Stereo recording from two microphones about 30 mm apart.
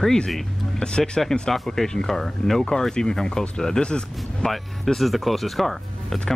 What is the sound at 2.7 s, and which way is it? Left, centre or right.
Speech, left.